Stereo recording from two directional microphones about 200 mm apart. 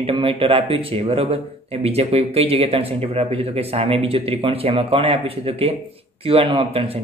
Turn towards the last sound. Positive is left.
turn(degrees=-30)  # may be behind; listen again after turning